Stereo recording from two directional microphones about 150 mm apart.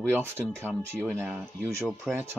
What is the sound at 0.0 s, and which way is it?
Speech, 15° right (ahead or behind).